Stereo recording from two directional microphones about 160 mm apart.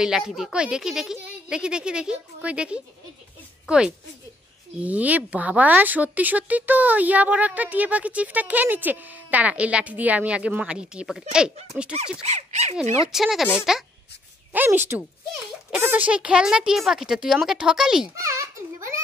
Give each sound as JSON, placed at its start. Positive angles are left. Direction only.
{"t": 0.0, "sound": "a woman's voice", "side_deg": -5}
{"t": 12.2, "sound": "a sound", "side_deg": -45}
{"t": 13.1, "sound": "a woman's voice", "side_deg": 0}